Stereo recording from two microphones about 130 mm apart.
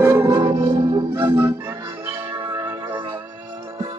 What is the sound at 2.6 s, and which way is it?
Music, 15° right (ahead or behind).